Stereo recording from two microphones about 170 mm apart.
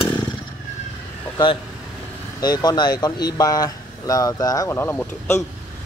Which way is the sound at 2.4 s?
25° left (ahead or behind).